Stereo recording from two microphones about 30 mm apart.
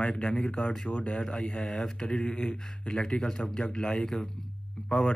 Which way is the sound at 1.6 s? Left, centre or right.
Left.